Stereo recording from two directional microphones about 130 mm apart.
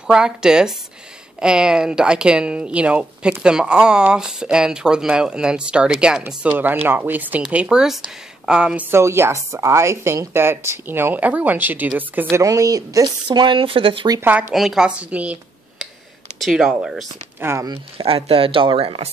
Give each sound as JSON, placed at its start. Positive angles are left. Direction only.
{"t": 0.0, "sound": "speech", "side_deg": -5}
{"t": 8.9, "sound": "a woman's voice", "side_deg": -20}
{"t": 14.5, "sound": "speech", "side_deg": -5}
{"t": 16.3, "sound": "speech", "side_deg": 0}
{"t": 17.4, "sound": "speech", "side_deg": -20}
{"t": 17.9, "sound": "speech", "side_deg": -45}